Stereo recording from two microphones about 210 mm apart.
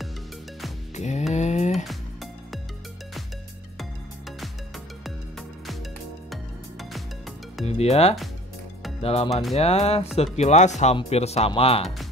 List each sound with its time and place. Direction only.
0.9 s music: 35° left (ahead or behind)
1.3 s a sound: 35° left (ahead or behind)
4.4 s music: centre (ahead or behind)
6.3 s music: centre (ahead or behind)
7.6 s speech: 30° left (ahead or behind)
9.3 s music: centre (ahead or behind)
9.6 s speech: 30° left (ahead or behind)